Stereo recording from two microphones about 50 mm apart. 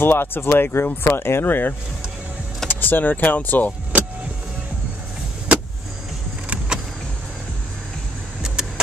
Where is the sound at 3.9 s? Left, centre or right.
Right.